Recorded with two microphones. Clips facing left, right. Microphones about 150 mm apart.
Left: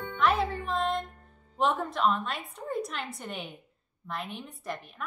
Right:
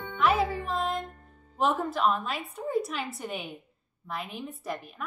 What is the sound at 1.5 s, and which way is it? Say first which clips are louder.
A woman's voice: right 1 dB; centre (ahead or behind).